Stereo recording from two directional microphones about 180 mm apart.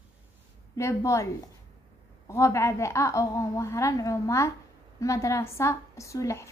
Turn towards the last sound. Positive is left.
turn(degrees=15)  # may be behind; listen again after turning